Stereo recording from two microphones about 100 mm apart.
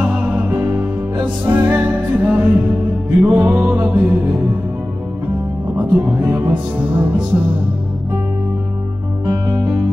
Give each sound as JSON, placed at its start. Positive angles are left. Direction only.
{"t": 0.0, "sound": "music", "side_deg": -15}
{"t": 5.8, "sound": "music", "side_deg": -15}
{"t": 9.2, "sound": "music", "side_deg": -25}